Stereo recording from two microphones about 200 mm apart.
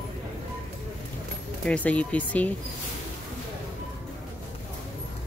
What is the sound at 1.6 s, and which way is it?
Speech, 5° left (ahead or behind).